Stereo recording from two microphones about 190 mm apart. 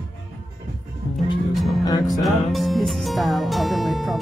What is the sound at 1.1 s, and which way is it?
Music, centre (ahead or behind).